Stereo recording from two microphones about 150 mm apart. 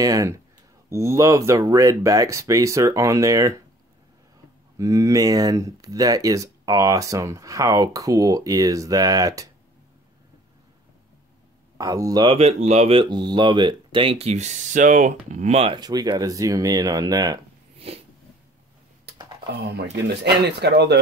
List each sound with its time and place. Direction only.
0.0 s speech: 20° right (ahead or behind)
4.7 s speech: 20° right (ahead or behind)
11.8 s speech: 25° right (ahead or behind)
12.3 s speech: 45° right (ahead or behind)
15.7 s speech: 25° right (ahead or behind)
17.7 s a sound: 40° right (ahead or behind)
20.4 s speech: 90° right